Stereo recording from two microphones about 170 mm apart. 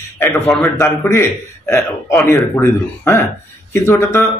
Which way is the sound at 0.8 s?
15° left (ahead or behind).